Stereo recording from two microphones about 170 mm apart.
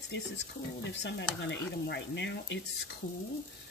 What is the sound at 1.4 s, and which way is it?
Speech, 90° left.